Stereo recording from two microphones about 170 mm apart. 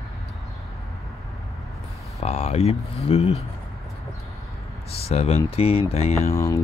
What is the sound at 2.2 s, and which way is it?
Speech, 40° left (ahead or behind).